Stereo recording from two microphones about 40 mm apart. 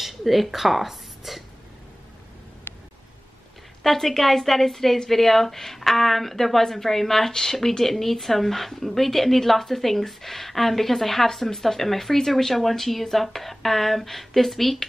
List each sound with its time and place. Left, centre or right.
0.0 s a woman's voice: centre
2.7 s a sound: left
3.8 s a woman's voice: centre